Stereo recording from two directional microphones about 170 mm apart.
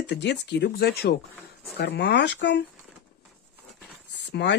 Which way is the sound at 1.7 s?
80° left.